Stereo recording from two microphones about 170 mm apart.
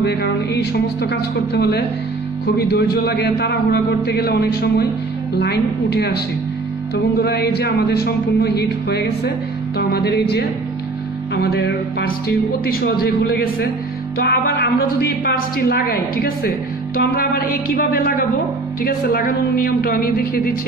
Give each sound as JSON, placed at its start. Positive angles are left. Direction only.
{"t": 0.0, "sound": "a man's voice", "side_deg": 75}
{"t": 11.3, "sound": "a man's voice", "side_deg": 75}